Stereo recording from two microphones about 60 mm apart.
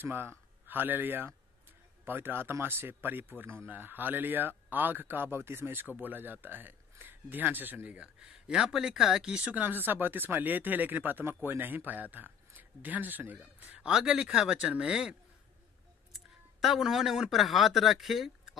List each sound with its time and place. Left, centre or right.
0.0 s a man's voice: right
5.9 s a man's voice: right
8.0 s speech: centre
9.7 s a man's voice: right
13.7 s speech: centre
16.6 s speech: centre